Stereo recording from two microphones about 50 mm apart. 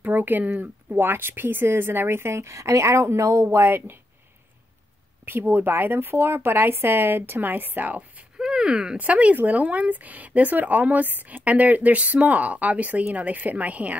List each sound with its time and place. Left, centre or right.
0.0 s speech: right
0.9 s a woman's voice: right
3.5 s speech: right
5.5 s speech: right
8.4 s a sound: centre
8.9 s speech: right